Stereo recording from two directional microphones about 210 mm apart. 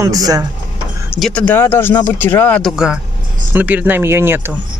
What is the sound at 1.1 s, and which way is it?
Speech, centre (ahead or behind).